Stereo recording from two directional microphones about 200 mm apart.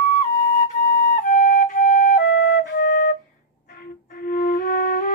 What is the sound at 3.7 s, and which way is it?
Music, 45° left (ahead or behind).